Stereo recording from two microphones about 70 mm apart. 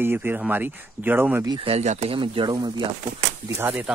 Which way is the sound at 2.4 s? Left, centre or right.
Right.